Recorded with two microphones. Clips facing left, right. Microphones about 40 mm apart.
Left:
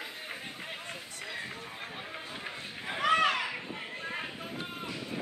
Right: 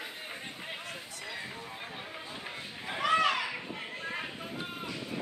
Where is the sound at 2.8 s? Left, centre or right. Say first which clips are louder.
Left 1 dB; centre.